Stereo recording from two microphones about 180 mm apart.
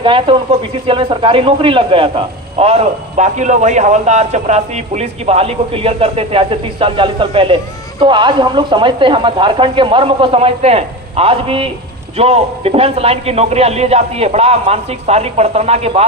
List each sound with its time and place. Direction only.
0.0 s speech: 30° right (ahead or behind)